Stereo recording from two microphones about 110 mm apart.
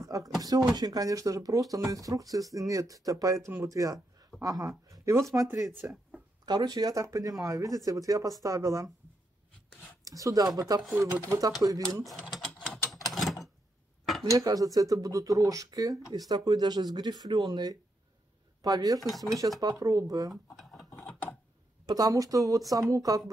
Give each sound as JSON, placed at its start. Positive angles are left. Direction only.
{"t": 0.0, "sound": "a sound", "side_deg": -30}
{"t": 0.4, "sound": "speech", "side_deg": -35}
{"t": 6.4, "sound": "speech", "side_deg": -40}
{"t": 10.0, "sound": "speech", "side_deg": -30}
{"t": 12.1, "sound": "mechanisms", "side_deg": 5}
{"t": 12.9, "sound": "a sound", "side_deg": 0}
{"t": 14.2, "sound": "speech", "side_deg": -30}
{"t": 18.9, "sound": "speech", "side_deg": 0}
{"t": 19.6, "sound": "speech", "side_deg": -30}
{"t": 20.5, "sound": "mechanisms", "side_deg": 0}
{"t": 21.8, "sound": "speech", "side_deg": -35}